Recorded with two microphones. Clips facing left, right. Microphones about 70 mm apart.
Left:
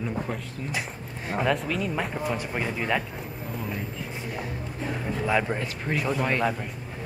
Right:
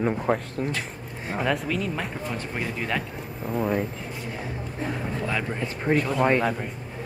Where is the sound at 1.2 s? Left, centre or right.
Centre.